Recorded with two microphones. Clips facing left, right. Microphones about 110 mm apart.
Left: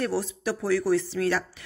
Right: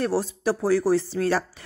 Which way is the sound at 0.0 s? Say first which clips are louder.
Right 4 dB; 35° right (ahead or behind).